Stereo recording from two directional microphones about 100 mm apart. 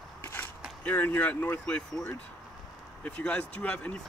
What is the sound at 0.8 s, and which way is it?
Speech, 15° left (ahead or behind).